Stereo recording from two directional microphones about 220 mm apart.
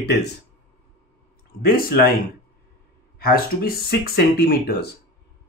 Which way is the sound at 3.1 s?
45° left (ahead or behind).